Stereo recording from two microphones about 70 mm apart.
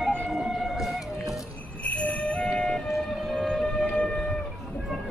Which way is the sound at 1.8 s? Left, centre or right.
Left.